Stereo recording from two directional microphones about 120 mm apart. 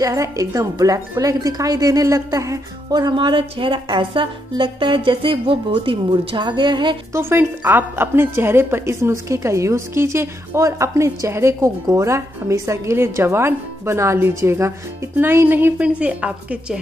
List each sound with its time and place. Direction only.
0.0 s speech: 30° right (ahead or behind)
7.2 s a woman's voice: 20° right (ahead or behind)